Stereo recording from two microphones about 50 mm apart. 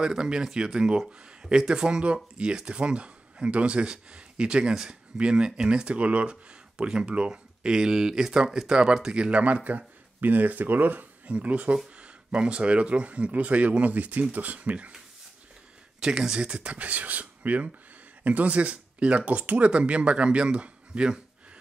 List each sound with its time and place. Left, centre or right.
0.0 s speech: centre
16.0 s speech: centre